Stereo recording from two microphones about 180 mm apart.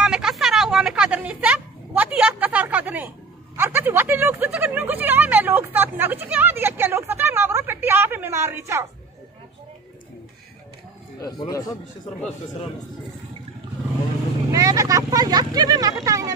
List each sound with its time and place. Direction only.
0.0 s a sound: 5° right (ahead or behind)
11.2 s a man's voice: 20° left (ahead or behind)
14.5 s speech: 20° right (ahead or behind)